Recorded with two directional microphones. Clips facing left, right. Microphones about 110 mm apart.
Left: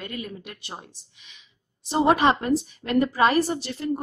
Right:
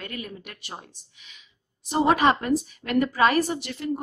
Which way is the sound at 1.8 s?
25° left (ahead or behind).